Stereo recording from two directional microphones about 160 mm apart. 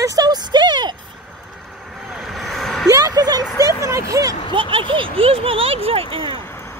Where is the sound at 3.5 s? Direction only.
20° right (ahead or behind).